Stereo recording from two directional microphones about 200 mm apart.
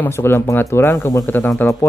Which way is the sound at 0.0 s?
10° left (ahead or behind).